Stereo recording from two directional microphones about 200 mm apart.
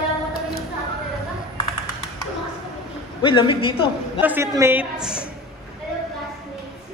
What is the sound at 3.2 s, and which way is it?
A man's voice, 25° left (ahead or behind).